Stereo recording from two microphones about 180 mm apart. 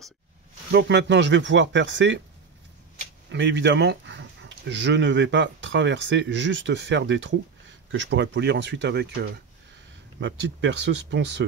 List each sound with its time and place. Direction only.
0.7 s speech: 70° right (ahead or behind); by 2.2 s 85° right
3.3 s speech: 80° right
10.2 s speech: 85° right